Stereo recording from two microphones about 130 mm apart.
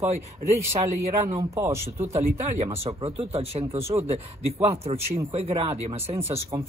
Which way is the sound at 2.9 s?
50° right (ahead or behind).